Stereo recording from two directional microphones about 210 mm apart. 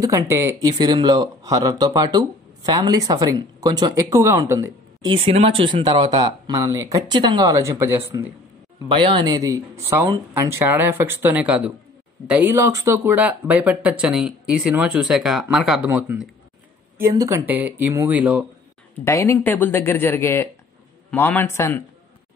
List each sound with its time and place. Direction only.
0.0 s speech: 15° right (ahead or behind)
8.8 s speech: 20° right (ahead or behind)
19.0 s speech: 15° left (ahead or behind)